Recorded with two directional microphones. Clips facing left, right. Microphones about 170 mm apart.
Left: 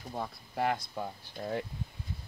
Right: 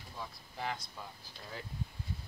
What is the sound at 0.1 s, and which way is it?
Speech, 55° left (ahead or behind).